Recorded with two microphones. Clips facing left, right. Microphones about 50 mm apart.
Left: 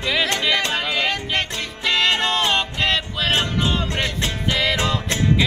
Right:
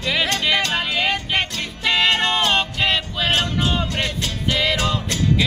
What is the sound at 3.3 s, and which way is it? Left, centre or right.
Music, left.